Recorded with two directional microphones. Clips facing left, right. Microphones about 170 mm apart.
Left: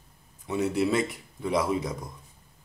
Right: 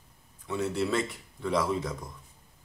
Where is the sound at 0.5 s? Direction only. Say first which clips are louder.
Left 3 dB; 15° left (ahead or behind).